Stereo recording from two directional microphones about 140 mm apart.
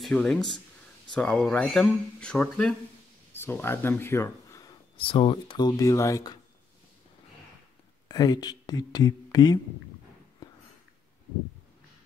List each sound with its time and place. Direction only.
0.0 s speech: 5° left (ahead or behind)
3.3 s speech: 15° left (ahead or behind)
4.9 s speech: 40° left (ahead or behind); by 6.2 s 20° left (ahead or behind)
8.1 s speech: 30° left (ahead or behind)